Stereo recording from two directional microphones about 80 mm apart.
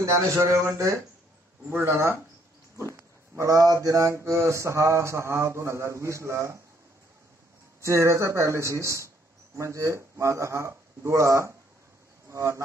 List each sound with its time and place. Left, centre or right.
0.0 s mantra: right
1.7 s mantra: right
3.3 s mantra: right
7.8 s mantra: right
12.3 s music: right